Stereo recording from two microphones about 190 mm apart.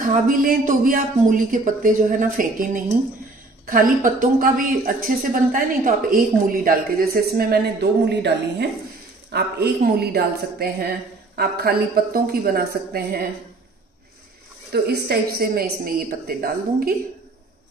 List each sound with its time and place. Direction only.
0.0 s a woman's voice: 45° right (ahead or behind)
14.7 s a woman's voice: 55° right (ahead or behind)